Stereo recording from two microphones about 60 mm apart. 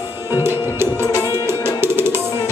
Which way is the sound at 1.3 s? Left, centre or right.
Right.